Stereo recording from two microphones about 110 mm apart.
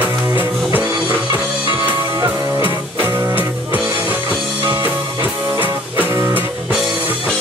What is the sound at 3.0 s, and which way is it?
Music, 20° right (ahead or behind).